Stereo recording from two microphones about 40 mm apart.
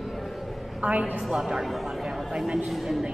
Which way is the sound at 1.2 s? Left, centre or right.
Centre.